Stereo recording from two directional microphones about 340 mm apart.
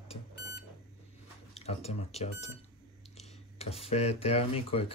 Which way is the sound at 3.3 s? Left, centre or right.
Centre.